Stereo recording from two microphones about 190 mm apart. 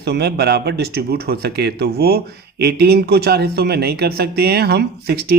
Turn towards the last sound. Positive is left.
turn(degrees=-55)  # may be behind; listen again after turning